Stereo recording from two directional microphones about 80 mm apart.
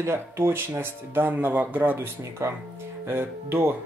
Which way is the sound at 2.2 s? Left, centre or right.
Right.